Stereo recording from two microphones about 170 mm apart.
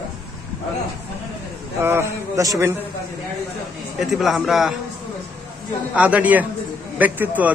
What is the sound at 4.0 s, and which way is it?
Speech, centre (ahead or behind).